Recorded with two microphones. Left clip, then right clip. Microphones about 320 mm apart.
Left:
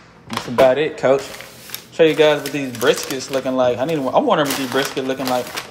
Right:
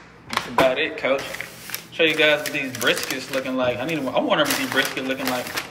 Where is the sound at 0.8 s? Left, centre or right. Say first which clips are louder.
Left 6 dB; centre.